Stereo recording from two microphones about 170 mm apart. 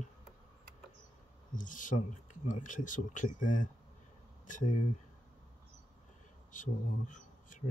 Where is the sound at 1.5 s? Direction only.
50° left (ahead or behind).